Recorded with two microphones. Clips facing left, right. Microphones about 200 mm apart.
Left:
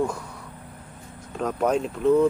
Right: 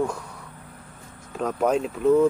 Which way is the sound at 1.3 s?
Centre (ahead or behind).